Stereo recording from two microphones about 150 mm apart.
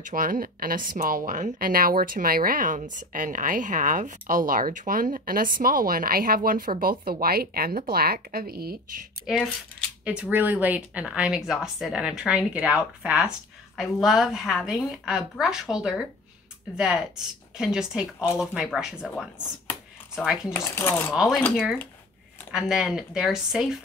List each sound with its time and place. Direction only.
0.0 s speech: 70° right (ahead or behind); by 9.0 s 90° right
9.2 s a woman's voice: 5° left (ahead or behind)
10.0 s a woman's voice: 10° right (ahead or behind)
20.5 s coin: 15° left (ahead or behind)
21.1 s a woman's voice: centre (ahead or behind)
22.5 s a woman's voice: 5° right (ahead or behind)